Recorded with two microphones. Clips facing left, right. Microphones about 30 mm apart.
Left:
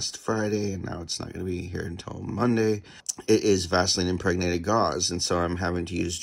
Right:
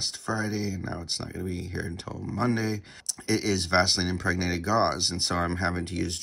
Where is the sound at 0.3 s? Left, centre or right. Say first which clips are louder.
Left 4 dB; right.